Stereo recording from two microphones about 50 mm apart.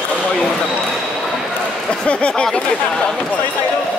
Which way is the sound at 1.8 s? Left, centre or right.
Left.